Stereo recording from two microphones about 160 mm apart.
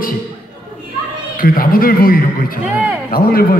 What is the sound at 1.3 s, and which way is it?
A man's voice, 60° left (ahead or behind).